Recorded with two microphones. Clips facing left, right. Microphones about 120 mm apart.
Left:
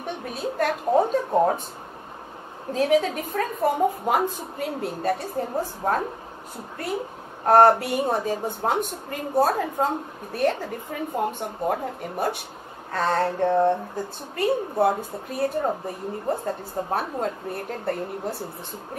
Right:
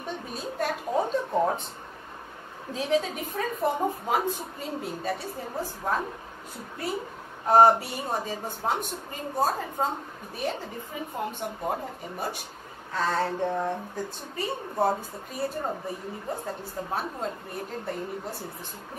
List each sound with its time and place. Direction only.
0.0 s a sound: 60° left (ahead or behind)
0.4 s a woman's voice: 55° left (ahead or behind)
2.7 s a woman's voice: 50° left (ahead or behind)
7.4 s a woman's voice: 55° left (ahead or behind)